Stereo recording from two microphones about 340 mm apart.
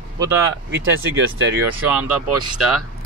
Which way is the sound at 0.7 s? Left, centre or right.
Right.